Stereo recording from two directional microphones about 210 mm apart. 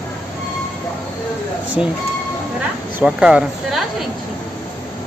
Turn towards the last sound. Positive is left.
turn(degrees=-5)  # may be behind; listen again after turning